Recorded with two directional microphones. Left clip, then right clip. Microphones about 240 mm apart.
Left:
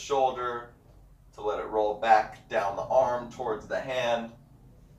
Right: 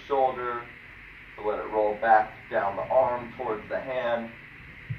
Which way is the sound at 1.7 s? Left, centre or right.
Left.